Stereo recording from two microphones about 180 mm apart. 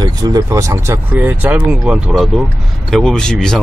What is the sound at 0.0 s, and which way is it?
Speech, 20° right (ahead or behind).